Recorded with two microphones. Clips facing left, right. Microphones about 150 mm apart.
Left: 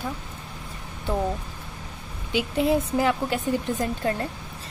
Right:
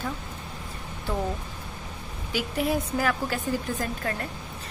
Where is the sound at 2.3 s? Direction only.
25° left (ahead or behind).